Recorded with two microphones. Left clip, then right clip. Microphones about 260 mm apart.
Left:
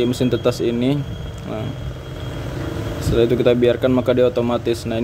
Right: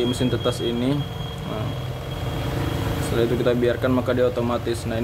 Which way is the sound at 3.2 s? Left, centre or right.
Centre.